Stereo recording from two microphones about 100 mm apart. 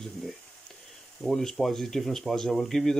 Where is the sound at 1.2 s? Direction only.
5° left (ahead or behind).